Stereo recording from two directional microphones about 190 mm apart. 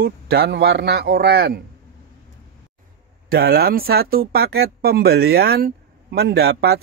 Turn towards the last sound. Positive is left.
turn(degrees=-60)  # may be behind; listen again after turning